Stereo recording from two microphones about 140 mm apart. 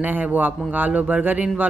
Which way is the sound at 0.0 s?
10° right (ahead or behind).